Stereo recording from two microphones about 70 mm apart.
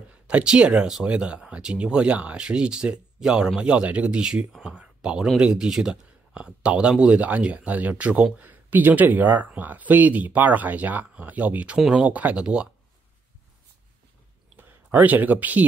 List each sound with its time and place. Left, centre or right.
0.1 s speech: centre
14.6 s speech: right